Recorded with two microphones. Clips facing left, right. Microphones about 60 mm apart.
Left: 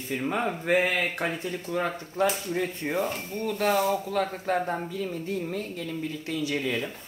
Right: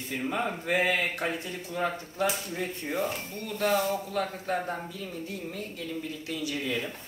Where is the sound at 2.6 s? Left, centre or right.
Left.